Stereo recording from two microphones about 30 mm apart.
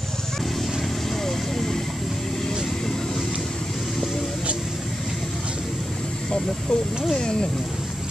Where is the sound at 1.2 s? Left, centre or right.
Centre.